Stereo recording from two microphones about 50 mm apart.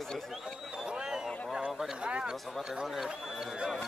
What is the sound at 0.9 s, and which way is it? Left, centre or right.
A man's voice, centre.